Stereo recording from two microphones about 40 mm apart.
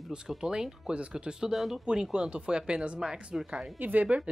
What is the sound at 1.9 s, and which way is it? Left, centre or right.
Speech, centre.